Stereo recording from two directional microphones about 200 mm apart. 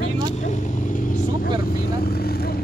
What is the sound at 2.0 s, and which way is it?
Vehicle, 50° left (ahead or behind).